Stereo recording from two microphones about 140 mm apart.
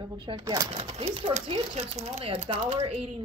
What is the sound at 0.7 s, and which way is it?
Speech, 50° right (ahead or behind).